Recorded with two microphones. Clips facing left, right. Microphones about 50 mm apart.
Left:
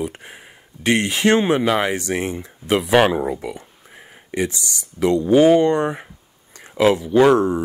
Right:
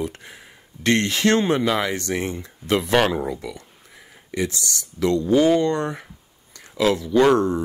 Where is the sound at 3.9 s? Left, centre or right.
Left.